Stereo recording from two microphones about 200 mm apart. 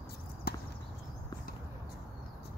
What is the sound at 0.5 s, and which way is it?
Horse, 50° left (ahead or behind).